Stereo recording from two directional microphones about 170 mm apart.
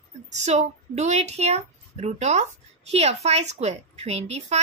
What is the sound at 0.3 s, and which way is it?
A woman's voice, 40° right (ahead or behind).